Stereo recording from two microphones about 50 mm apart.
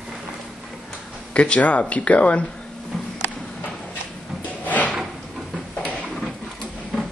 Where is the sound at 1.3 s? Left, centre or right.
Left.